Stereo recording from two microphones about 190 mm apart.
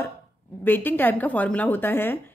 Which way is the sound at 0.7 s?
10° left (ahead or behind).